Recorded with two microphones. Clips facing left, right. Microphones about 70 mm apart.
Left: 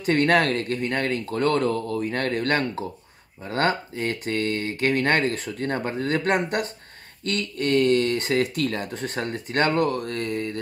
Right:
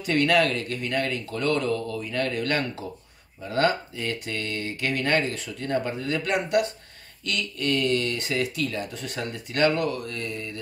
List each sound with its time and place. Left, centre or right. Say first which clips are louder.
0.0 s speech: left 2 dB; left